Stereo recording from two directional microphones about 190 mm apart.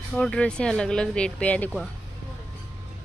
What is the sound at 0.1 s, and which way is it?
Speech, 5° left (ahead or behind).